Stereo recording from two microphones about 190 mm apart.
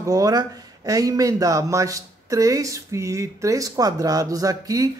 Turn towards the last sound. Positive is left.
turn(degrees=-20)  # may be behind; listen again after turning